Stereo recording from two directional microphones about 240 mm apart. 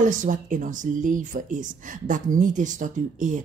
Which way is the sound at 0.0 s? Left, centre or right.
Right.